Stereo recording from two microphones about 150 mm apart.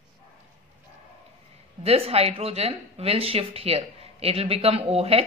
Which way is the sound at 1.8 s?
40° right (ahead or behind).